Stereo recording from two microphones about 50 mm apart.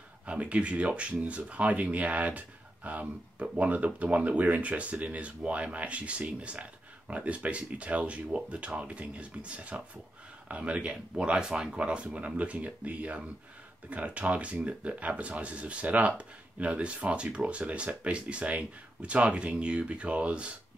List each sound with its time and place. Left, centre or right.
0.3 s speech: right